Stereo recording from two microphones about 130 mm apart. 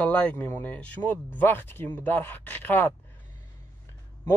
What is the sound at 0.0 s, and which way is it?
Speech, 10° left (ahead or behind).